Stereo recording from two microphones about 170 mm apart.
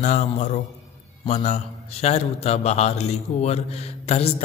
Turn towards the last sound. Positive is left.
turn(degrees=40)  # may be behind; listen again after turning